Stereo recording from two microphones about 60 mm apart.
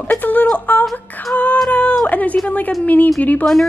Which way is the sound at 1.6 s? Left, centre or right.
Left.